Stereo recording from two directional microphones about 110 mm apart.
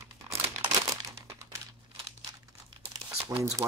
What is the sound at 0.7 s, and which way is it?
Crumpling, 30° right (ahead or behind).